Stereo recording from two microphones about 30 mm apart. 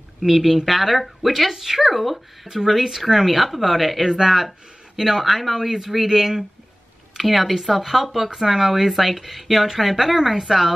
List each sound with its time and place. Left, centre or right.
0.2 s a woman's voice: centre
4.0 s speech: centre
4.3 s a woman's voice: centre
4.9 s speech: centre
7.2 s a woman's voice: centre
8.8 s a woman's voice: centre